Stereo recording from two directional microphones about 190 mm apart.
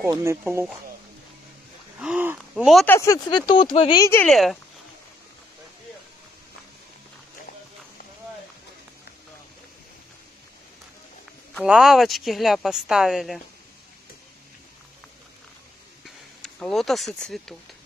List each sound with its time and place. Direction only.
0.0 s speech: 15° right (ahead or behind)
2.0 s gasp: 5° right (ahead or behind)
2.9 s speech: 20° left (ahead or behind)
4.0 s speech: 10° left (ahead or behind)
4.3 s speech: centre (ahead or behind)
11.5 s speech: 5° right (ahead or behind)
16.4 s speech: centre (ahead or behind)